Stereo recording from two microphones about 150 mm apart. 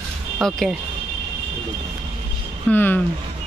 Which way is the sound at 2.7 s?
10° left (ahead or behind).